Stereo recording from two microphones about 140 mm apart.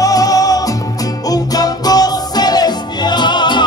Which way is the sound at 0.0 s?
25° left (ahead or behind).